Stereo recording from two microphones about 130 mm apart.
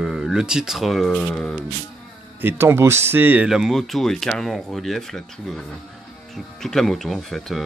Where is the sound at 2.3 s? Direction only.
15° right (ahead or behind).